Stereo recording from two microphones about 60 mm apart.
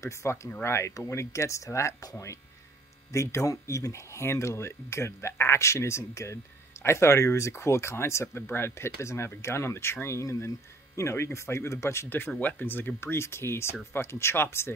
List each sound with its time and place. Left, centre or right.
0.0 s speech: left
12.4 s speech: left